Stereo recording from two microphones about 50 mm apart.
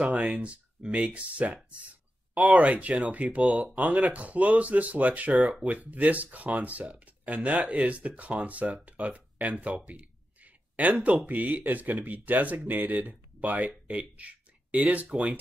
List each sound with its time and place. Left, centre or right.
0.3 s speech: right
10.4 s a sound: right
11.2 s speech: right